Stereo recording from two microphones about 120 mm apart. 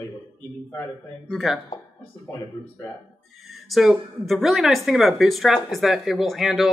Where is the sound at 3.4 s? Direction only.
Centre (ahead or behind).